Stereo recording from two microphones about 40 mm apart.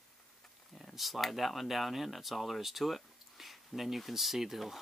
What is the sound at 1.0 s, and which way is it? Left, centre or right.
Speech, centre.